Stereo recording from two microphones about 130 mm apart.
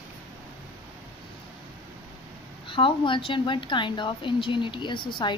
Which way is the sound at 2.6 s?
40° left (ahead or behind).